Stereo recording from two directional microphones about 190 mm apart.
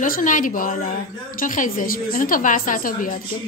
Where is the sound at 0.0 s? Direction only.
45° left (ahead or behind).